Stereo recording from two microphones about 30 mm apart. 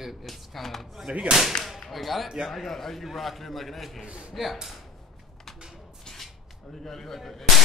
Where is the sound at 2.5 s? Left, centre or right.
Centre.